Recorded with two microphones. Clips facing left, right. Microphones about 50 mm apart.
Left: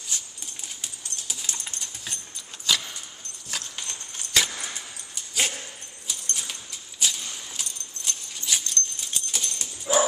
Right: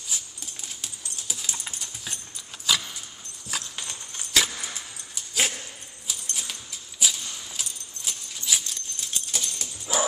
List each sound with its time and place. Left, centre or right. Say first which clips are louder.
0.1 s dog: even; centre
2.7 s keys jangling: even; centre
3.4 s clip-clop: right 1 dB; centre
5.1 s dog: right 1 dB; centre
6.0 s keys jangling: left 1 dB; centre
9.9 s dog: left 5 dB; left